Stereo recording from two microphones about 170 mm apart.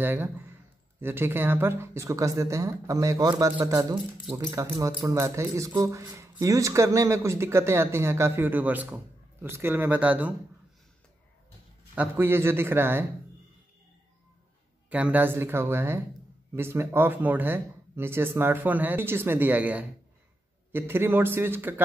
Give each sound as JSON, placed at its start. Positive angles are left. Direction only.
{"t": 0.0, "sound": "speech", "side_deg": -10}
{"t": 11.9, "sound": "speech", "side_deg": -10}
{"t": 14.9, "sound": "speech", "side_deg": -10}